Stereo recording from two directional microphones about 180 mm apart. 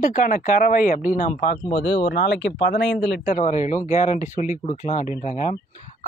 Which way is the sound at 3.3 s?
45° left (ahead or behind).